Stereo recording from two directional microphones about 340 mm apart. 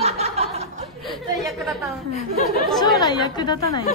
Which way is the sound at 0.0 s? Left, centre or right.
Centre.